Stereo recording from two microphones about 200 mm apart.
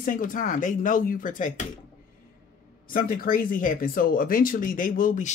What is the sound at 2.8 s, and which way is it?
Speech, 45° left (ahead or behind).